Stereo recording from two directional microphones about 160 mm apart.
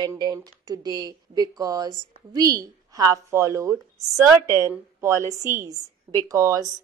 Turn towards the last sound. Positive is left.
turn(degrees=-20)  # may be behind; listen again after turning